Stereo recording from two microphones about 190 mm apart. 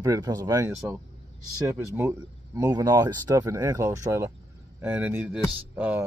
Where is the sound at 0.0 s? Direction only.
20° right (ahead or behind).